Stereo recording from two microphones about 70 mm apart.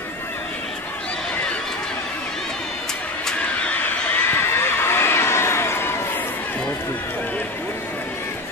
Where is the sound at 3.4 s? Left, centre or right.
Left.